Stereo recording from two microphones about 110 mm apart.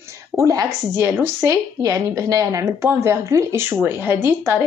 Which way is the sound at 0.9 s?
20° right (ahead or behind).